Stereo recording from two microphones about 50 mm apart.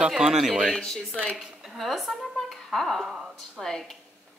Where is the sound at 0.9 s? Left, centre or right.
Centre.